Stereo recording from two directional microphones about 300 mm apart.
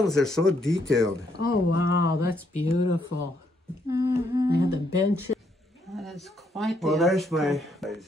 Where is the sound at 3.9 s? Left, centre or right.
Centre.